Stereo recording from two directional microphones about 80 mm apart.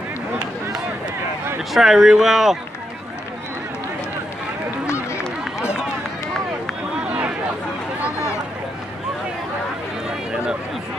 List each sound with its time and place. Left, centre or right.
1.7 s speech: centre
4.8 s run: left
7.1 s a sound: centre
10.0 s run: centre